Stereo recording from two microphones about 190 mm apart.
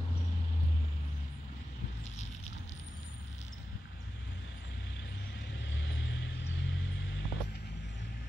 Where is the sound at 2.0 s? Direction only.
35° left (ahead or behind).